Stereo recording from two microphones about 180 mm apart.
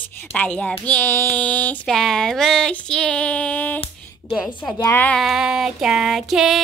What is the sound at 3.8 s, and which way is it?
A woman's voice, 25° left (ahead or behind).